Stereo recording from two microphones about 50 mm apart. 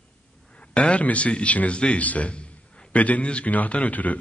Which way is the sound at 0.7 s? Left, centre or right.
Left.